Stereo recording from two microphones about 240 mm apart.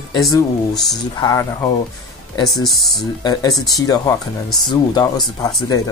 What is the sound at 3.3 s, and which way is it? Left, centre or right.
Speech, centre.